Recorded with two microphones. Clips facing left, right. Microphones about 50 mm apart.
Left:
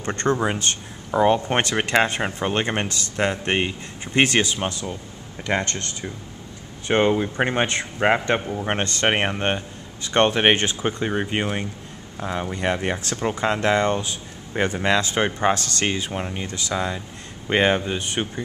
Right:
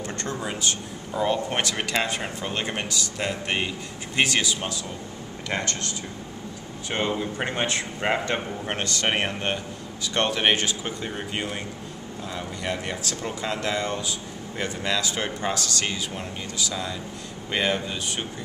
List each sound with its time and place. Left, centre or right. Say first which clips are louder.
0.0 s speech: left 8 dB; left
7.1 s speech: left 6 dB; left